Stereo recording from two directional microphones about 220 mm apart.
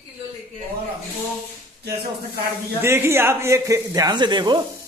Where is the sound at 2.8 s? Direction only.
10° right (ahead or behind).